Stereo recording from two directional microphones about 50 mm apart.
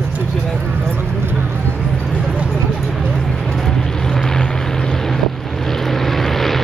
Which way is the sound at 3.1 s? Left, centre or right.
Centre.